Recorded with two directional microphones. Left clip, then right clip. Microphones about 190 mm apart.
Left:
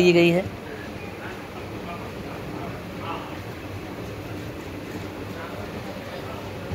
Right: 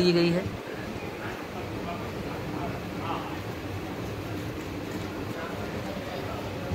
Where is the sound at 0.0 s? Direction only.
10° left (ahead or behind).